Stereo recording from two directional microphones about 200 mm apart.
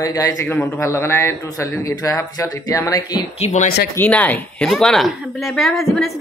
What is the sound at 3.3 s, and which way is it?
Speech, 35° left (ahead or behind).